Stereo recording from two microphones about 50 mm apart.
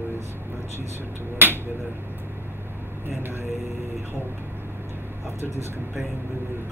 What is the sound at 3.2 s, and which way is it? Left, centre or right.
Speech, right.